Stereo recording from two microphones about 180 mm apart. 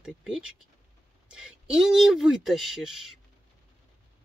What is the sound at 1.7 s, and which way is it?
Speech, 5° right (ahead or behind).